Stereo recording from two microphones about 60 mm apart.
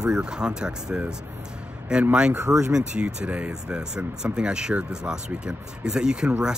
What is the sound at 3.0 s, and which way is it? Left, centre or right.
A man's voice, centre.